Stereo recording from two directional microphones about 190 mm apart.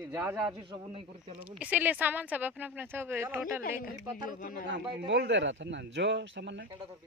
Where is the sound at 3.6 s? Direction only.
45° left (ahead or behind).